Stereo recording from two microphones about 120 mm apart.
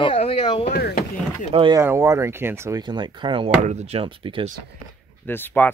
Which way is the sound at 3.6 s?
70° right (ahead or behind).